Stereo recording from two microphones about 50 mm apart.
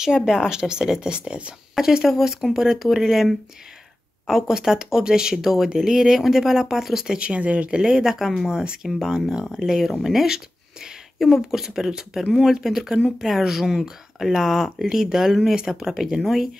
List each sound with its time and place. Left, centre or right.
0.0 s speech: centre
7.2 s speech: right
7.8 s speech: centre
8.5 s speech: centre